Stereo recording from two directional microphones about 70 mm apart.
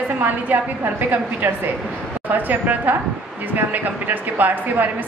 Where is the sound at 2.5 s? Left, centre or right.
Right.